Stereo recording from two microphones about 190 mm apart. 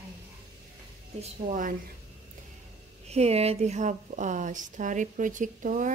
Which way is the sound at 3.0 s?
35° right (ahead or behind).